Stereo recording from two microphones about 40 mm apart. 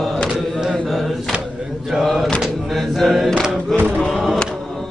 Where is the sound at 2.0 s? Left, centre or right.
Centre.